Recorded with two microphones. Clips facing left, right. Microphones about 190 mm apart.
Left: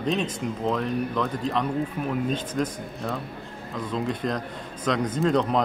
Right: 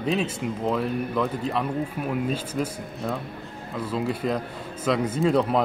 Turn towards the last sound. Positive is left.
turn(degrees=-5)  # may be behind; listen again after turning